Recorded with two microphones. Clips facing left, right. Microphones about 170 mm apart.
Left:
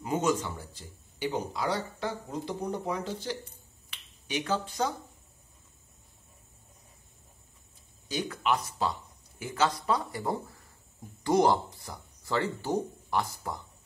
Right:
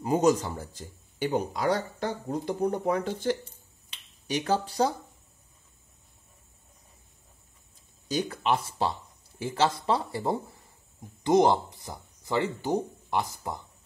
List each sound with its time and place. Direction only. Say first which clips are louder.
0.0 s speech: right 5 dB; 35° right (ahead or behind); by 3.3 s 55° right (ahead or behind)
4.3 s speech: right 4 dB; 35° right (ahead or behind)
8.1 s speech: right 2 dB; 35° right (ahead or behind); by 13.6 s 20° right (ahead or behind)